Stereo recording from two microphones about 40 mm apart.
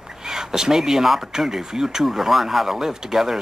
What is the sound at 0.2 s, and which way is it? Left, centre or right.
Speech, centre.